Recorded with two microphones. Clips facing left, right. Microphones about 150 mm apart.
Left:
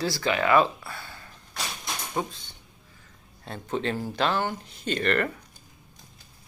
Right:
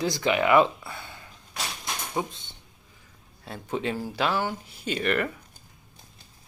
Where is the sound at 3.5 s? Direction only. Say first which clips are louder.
Left 1 dB; 10° right (ahead or behind).